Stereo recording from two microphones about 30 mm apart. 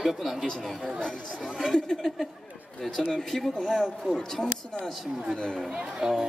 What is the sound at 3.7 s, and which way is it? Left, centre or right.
Speech, centre.